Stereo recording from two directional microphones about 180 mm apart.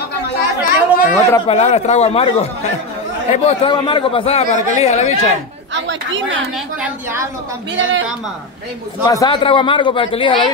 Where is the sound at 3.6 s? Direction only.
25° left (ahead or behind).